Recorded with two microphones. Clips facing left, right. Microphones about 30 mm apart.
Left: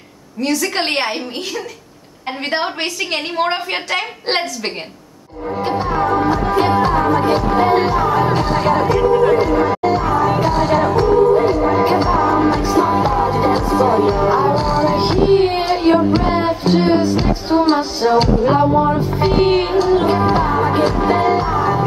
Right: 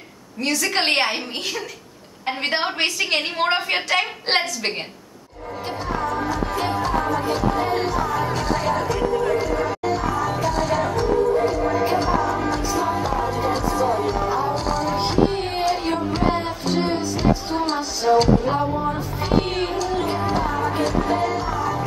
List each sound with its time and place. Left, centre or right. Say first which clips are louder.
0.4 s a woman's voice: left 3 dB; centre
5.7 s music: left 8 dB; left
18.9 s music: left 7 dB; left